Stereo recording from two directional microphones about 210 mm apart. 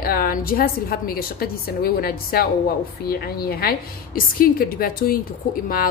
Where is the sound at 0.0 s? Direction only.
45° left (ahead or behind).